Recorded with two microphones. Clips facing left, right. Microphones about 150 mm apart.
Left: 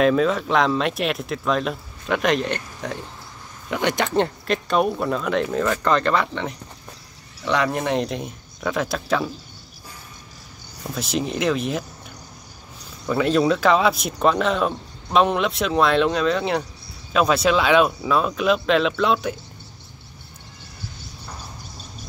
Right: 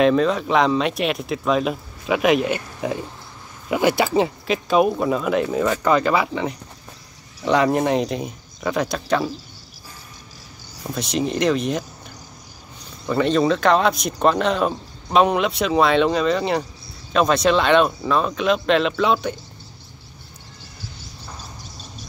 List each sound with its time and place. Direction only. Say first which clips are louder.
0.0 s speech: right 1 dB; centre (ahead or behind)
7.4 s speech: right 4 dB; 35° right (ahead or behind)
7.8 s speech: right 3 dB; centre (ahead or behind)
10.8 s speech: right 2 dB; centre (ahead or behind)
13.0 s speech: right 1 dB; 5° left (ahead or behind)